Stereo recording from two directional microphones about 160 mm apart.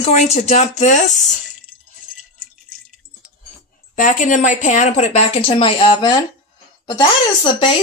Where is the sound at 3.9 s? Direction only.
55° left (ahead or behind).